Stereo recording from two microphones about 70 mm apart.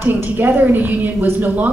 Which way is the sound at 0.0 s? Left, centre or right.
Right.